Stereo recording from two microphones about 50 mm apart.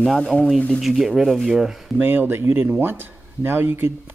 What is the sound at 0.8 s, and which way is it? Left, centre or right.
Speech, centre.